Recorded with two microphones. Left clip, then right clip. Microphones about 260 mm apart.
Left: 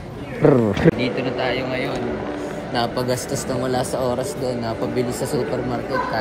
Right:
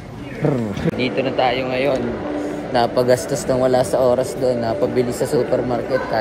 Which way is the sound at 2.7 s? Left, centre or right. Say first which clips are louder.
Right 7 dB; centre.